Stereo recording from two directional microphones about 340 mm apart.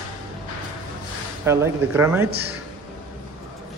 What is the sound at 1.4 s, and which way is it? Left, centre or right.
Speech, centre.